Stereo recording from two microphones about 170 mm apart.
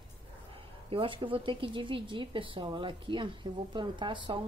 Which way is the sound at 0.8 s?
30° right (ahead or behind).